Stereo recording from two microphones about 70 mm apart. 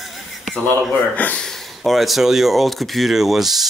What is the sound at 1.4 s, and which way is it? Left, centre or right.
Speech, centre.